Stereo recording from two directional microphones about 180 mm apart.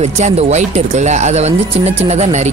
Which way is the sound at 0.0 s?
40° right (ahead or behind).